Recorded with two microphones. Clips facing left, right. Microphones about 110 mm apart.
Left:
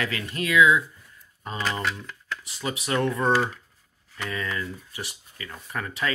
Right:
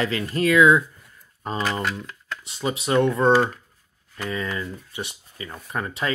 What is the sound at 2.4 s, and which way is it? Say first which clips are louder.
Speech: right 6 dB; 25° right (ahead or behind).